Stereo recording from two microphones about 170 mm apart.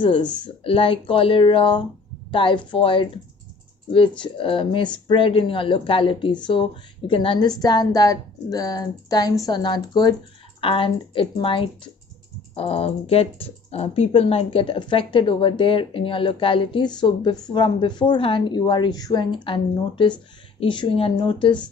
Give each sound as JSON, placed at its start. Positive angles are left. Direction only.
{"t": 0.0, "sound": "speech", "side_deg": 30}
{"t": 4.2, "sound": "speech", "side_deg": 30}